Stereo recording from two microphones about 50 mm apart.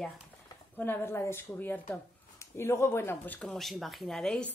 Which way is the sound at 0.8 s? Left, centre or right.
Left.